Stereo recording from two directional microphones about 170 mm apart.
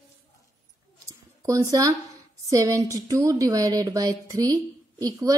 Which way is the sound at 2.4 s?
20° right (ahead or behind).